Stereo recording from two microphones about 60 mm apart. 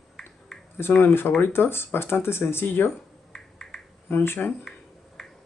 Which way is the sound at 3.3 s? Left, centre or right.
Centre.